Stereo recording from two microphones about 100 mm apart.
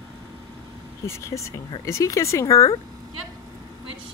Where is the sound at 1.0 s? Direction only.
30° left (ahead or behind).